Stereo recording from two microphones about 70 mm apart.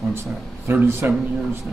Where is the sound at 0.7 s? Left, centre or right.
Right.